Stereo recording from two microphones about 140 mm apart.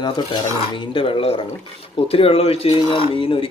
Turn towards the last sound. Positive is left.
turn(degrees=40)  # may be behind; listen again after turning